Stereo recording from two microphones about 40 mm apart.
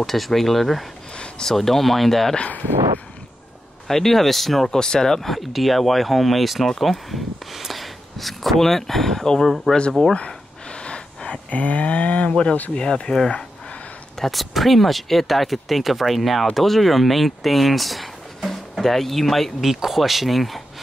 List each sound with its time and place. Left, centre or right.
0.0 s speech: centre
3.8 s speech: centre
4.6 s speech: centre
10.8 s gasp: left
11.5 s a sound: left
12.3 s speech: left
14.2 s speech: centre
19.6 s speech: centre